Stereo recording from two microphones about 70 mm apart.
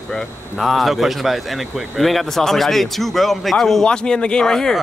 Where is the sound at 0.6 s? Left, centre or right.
Centre.